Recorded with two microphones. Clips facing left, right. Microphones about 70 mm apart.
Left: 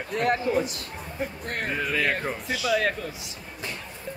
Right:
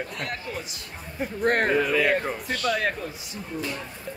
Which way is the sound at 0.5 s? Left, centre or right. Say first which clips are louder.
Left 10 dB; left.